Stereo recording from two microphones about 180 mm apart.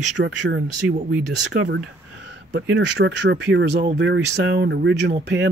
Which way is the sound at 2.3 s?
75° right (ahead or behind).